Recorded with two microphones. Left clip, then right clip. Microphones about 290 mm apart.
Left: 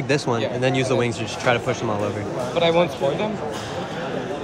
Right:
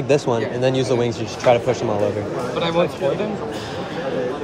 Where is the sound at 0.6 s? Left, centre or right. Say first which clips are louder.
Right 2 dB; centre.